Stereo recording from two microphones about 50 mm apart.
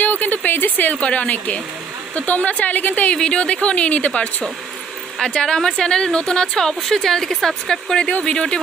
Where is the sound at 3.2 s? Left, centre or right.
Centre.